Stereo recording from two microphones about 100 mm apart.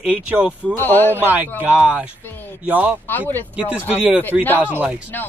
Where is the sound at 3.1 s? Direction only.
20° left (ahead or behind).